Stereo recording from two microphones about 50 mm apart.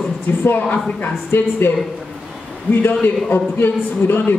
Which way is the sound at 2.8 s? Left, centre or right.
Left.